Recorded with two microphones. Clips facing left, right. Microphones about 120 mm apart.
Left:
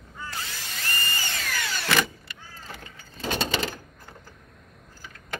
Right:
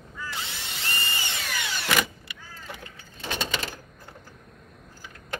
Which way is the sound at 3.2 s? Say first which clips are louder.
Left 4 dB; 35° left (ahead or behind).